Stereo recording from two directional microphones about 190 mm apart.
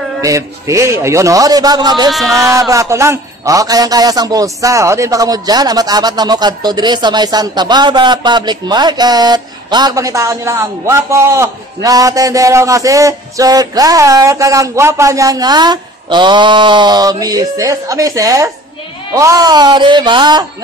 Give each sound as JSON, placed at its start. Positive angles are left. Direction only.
{"t": 0.2, "sound": "a man's voice", "side_deg": -15}
{"t": 2.0, "sound": "speech", "side_deg": 0}
{"t": 2.5, "sound": "a man's voice", "side_deg": -15}